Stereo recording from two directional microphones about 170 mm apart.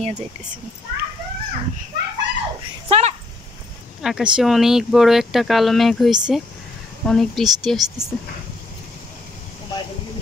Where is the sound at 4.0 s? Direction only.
5° right (ahead or behind).